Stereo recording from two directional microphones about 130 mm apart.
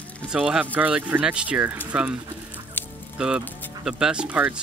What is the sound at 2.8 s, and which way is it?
Music, 15° left (ahead or behind).